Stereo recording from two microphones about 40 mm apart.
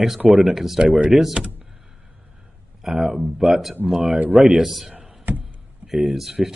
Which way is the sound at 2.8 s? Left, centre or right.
Centre.